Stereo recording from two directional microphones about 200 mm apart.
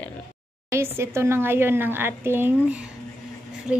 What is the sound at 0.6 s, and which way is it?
A woman's voice, 15° right (ahead or behind).